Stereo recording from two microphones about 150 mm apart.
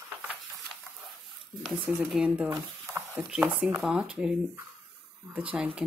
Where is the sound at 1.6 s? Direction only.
10° right (ahead or behind).